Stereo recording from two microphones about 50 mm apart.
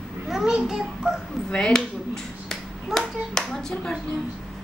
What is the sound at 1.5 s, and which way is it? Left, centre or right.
Speech, centre.